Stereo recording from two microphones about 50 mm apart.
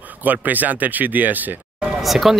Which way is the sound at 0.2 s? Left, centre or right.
Right.